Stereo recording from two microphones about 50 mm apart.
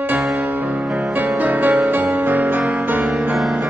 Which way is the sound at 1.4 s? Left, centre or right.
Right.